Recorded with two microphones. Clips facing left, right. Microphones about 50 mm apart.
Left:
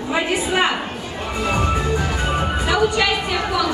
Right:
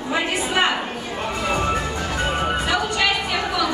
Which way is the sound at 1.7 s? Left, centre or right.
Centre.